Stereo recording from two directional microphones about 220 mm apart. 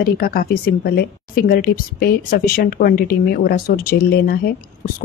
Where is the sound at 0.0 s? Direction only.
40° left (ahead or behind).